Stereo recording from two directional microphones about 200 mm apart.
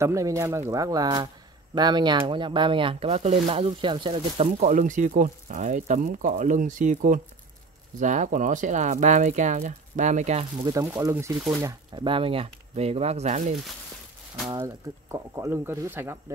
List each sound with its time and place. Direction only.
0.0 s speech: 15° right (ahead or behind); by 10.4 s 35° right (ahead or behind)
10.6 s speech: 15° right (ahead or behind); by 13.6 s 35° right (ahead or behind)
14.5 s speech: 15° right (ahead or behind)